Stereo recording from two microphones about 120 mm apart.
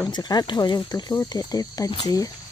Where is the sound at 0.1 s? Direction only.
35° left (ahead or behind).